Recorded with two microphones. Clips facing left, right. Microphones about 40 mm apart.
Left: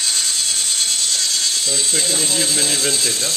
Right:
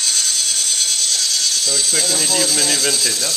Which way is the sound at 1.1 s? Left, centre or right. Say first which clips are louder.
Right 1 dB; left.